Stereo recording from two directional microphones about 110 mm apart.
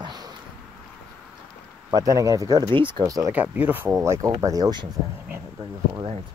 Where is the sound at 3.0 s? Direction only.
30° right (ahead or behind).